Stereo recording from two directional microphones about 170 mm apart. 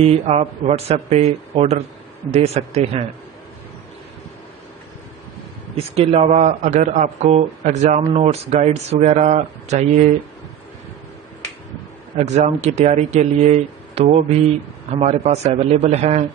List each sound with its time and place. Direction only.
0.0 s speech: 40° right (ahead or behind)
5.8 s a man's voice: 35° right (ahead or behind)
12.2 s speech: 40° right (ahead or behind)